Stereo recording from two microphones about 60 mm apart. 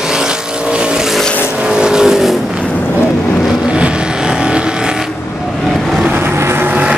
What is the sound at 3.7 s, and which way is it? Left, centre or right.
Vehicle, centre.